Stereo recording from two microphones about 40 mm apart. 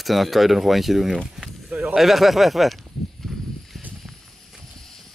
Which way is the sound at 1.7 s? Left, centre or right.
Right.